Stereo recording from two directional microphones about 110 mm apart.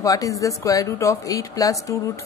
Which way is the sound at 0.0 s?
30° left (ahead or behind).